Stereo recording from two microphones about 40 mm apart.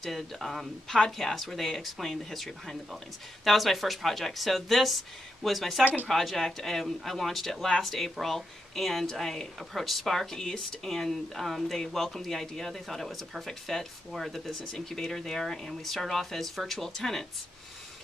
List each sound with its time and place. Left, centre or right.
0.0 s speech: centre